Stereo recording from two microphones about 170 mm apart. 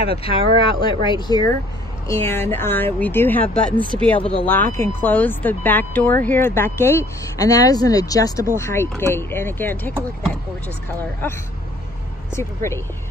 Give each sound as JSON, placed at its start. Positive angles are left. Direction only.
{"t": 0.1, "sound": "speech", "side_deg": 35}
{"t": 12.3, "sound": "speech", "side_deg": 15}